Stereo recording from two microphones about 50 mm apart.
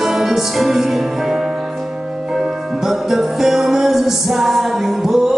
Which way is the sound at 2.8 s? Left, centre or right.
Centre.